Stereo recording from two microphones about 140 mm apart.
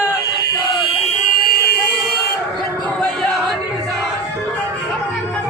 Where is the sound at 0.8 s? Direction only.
50° left (ahead or behind).